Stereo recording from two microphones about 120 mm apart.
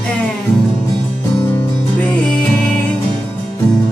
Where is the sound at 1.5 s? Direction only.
15° left (ahead or behind).